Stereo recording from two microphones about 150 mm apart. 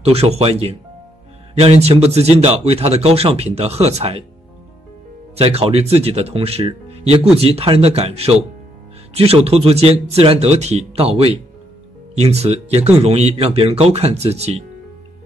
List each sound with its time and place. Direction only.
0.0 s a man's voice: 45° right (ahead or behind)
5.3 s a man's voice: 40° right (ahead or behind)